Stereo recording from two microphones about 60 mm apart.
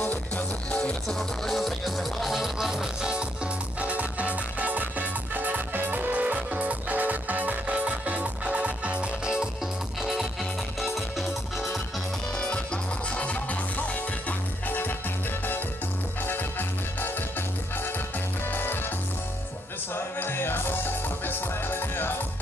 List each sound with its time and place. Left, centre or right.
0.0 s music: left
1.0 s music: centre
3.8 s music: right
10.8 s music: centre
12.4 s music: centre
16.3 s music: left
18.5 s music: left
19.9 s music: left